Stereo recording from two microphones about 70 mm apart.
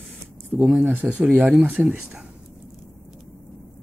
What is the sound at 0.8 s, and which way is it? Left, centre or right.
Speech, centre.